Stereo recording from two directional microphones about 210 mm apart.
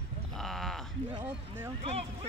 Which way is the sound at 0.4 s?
Centre (ahead or behind).